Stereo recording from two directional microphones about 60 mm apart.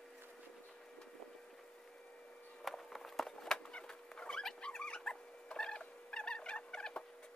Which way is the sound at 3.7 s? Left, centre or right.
Centre.